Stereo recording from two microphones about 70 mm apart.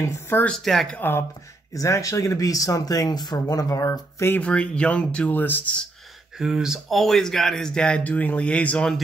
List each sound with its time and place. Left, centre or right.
0.1 s speech: left
0.5 s speech: centre
1.7 s speech: left
4.4 s speech: centre
6.3 s speech: centre
7.0 s speech: centre